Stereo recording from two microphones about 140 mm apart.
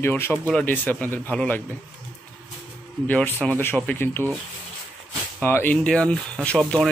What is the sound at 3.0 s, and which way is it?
Speech, 15° left (ahead or behind).